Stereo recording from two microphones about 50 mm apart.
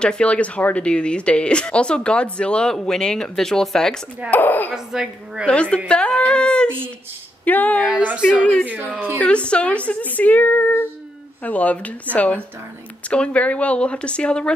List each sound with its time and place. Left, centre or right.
0.0 s speech: left
4.3 s speech: left
4.7 s speech: centre
5.5 s speech: left
7.4 s speech: left
8.6 s speech: right
9.2 s speech: left